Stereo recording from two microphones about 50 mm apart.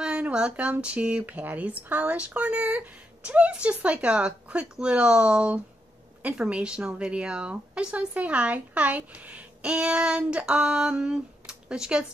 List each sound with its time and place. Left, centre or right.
0.0 s speech: right